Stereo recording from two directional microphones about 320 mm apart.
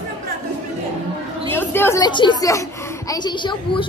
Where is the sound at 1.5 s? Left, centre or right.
Centre.